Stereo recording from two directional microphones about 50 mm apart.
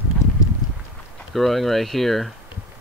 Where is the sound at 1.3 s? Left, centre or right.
Centre.